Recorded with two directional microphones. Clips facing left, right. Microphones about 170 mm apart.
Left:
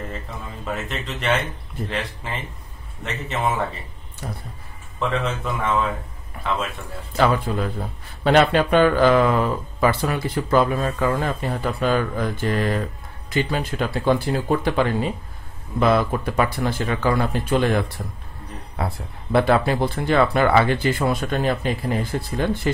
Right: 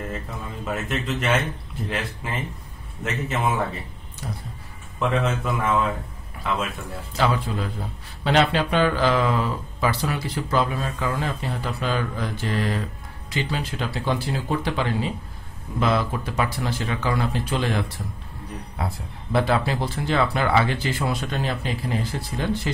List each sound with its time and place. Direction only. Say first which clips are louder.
0.8 s a man's voice: even; centre (ahead or behind)
4.9 s a man's voice: right 1 dB; centre (ahead or behind)
7.2 s speech: left 4 dB; 55° left (ahead or behind)